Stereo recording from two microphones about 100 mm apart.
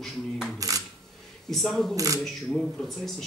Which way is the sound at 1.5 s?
Centre (ahead or behind).